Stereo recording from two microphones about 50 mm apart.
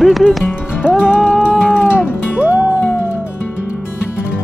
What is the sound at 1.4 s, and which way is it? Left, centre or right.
Cat, centre.